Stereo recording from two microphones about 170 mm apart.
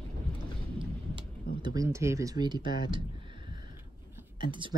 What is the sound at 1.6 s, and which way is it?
Speech, 20° right (ahead or behind).